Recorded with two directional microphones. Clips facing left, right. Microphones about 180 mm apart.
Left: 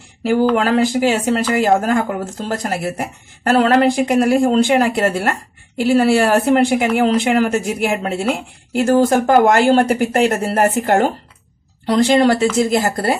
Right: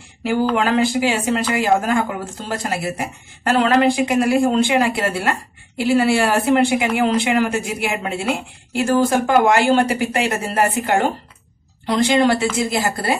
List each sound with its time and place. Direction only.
0.2 s speech: 40° left (ahead or behind)